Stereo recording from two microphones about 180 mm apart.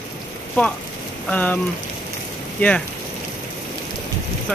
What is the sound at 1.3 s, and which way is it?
Speech, 10° left (ahead or behind).